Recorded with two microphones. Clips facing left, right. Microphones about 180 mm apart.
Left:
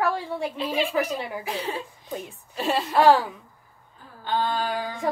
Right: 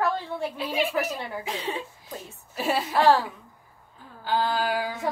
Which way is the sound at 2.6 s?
Centre (ahead or behind).